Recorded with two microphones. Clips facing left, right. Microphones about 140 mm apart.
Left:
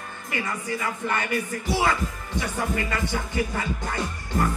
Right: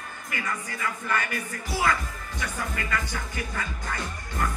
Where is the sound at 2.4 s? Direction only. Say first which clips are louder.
Left 6 dB; 25° left (ahead or behind).